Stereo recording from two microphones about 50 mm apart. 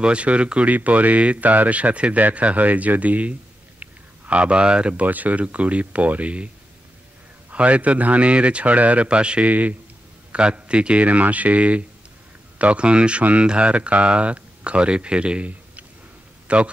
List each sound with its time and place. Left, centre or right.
0.0 s speech: right
3.8 s a sound: right
5.0 s speech: right
7.5 s speech: right
9.5 s speech: right
10.3 s a man's voice: right